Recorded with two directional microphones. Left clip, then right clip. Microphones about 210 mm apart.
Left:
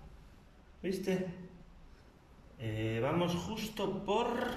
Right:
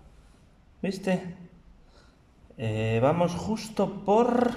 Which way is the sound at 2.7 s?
25° right (ahead or behind).